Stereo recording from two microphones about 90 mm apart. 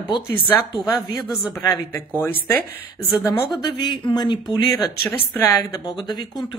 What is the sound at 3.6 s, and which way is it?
Speech, 55° left (ahead or behind).